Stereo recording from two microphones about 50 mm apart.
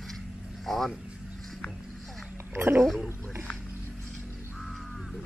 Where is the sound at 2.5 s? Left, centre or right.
Right.